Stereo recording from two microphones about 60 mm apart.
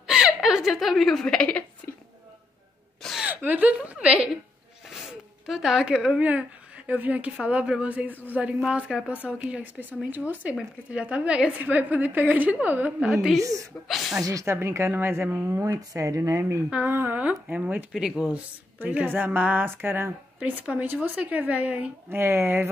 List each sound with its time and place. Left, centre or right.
0.0 s laughter: centre
1.2 s a woman's voice: centre
3.0 s gasp: centre
3.3 s a woman's voice: right
5.0 s a woman's voice: centre; by 12.9 s right
13.0 s a woman's voice: centre
13.4 s a woman's voice: right
13.8 s a woman's voice: centre
14.4 s speech: right
15.2 s a woman's voice: right
15.9 s speech: right
16.7 s a woman's voice: right
17.9 s a woman's voice: centre; by 20.1 s right
20.3 s a woman's voice: right